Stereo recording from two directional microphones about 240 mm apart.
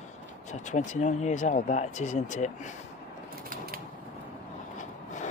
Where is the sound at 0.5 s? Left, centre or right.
Left.